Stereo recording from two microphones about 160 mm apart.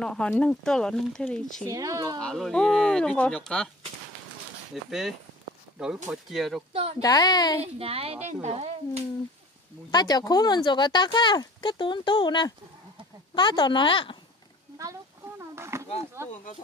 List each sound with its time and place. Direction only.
0.0 s speech: 5° left (ahead or behind)
1.7 s speech: 20° right (ahead or behind)
2.2 s speech: 5° left (ahead or behind)
4.7 s speech: centre (ahead or behind)
6.0 s speech: centre (ahead or behind)
6.7 s speech: 35° right (ahead or behind)
7.0 s speech: 25° left (ahead or behind)
7.6 s speech: 35° right (ahead or behind)
9.8 s speech: 25° left (ahead or behind)
14.8 s a sound: 20° right (ahead or behind)
16.2 s speech: 15° right (ahead or behind)